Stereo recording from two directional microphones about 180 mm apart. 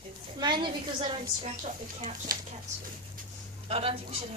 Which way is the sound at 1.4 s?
40° right (ahead or behind).